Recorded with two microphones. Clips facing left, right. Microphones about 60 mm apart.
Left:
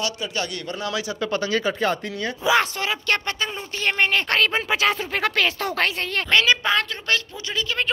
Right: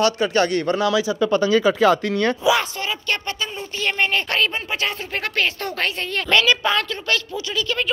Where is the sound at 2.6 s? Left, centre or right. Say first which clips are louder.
Left 2 dB; left.